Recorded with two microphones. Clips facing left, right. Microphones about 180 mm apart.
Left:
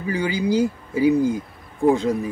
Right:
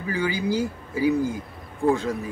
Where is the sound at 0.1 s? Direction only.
20° left (ahead or behind).